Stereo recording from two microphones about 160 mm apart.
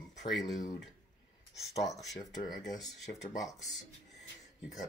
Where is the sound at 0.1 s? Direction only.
90° left.